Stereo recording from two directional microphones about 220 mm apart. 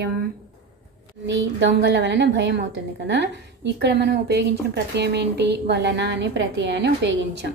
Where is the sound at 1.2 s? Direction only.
55° right (ahead or behind).